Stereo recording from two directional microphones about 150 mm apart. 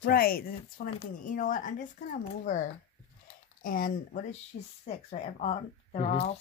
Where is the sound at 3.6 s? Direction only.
65° left (ahead or behind).